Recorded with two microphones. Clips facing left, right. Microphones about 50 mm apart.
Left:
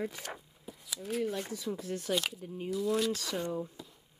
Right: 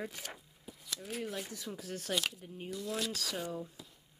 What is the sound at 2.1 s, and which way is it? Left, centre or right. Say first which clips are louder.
Speech: left 2 dB; centre.